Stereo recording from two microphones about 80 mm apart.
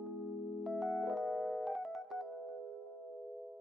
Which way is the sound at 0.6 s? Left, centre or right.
Centre.